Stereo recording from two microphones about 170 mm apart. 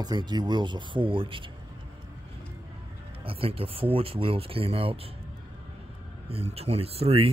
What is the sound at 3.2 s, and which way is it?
Speech, 35° right (ahead or behind).